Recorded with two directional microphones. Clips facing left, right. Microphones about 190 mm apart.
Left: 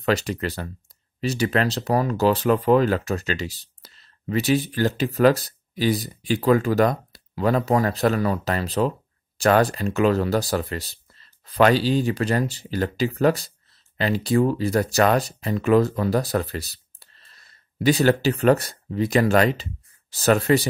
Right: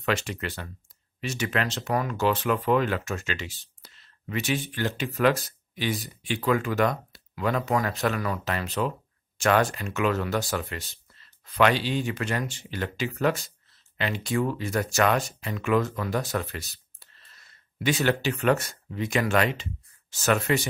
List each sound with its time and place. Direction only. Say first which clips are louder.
0.0 s speech: left 5 dB; 35° left (ahead or behind)